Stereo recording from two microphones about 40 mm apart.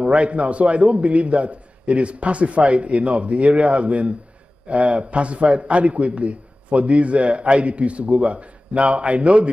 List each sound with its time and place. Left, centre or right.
0.0 s a man's voice: right